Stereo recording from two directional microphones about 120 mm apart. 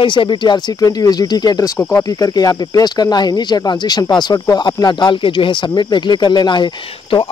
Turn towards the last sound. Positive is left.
turn(degrees=50)  # may be behind; listen again after turning